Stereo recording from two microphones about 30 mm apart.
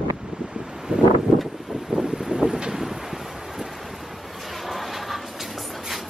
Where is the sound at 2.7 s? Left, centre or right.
Centre.